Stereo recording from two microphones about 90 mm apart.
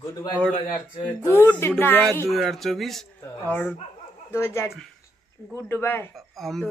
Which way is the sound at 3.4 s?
20° left (ahead or behind).